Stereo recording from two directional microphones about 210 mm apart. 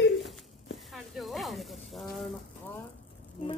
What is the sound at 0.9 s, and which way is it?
Speech, centre (ahead or behind).